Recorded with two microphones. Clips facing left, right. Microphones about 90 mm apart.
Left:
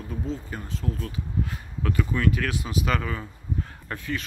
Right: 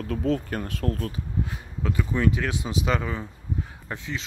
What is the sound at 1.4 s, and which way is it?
Speech, 20° right (ahead or behind).